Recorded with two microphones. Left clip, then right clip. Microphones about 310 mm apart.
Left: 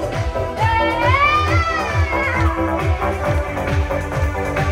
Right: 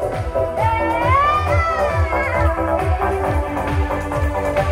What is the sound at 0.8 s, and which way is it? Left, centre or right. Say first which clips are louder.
Music: even; right.